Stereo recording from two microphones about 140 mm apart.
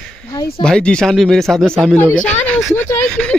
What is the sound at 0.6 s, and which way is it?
Speech, 5° left (ahead or behind).